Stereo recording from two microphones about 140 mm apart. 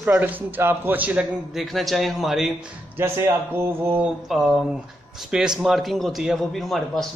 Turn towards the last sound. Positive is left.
turn(degrees=0)  # may be behind; listen again after turning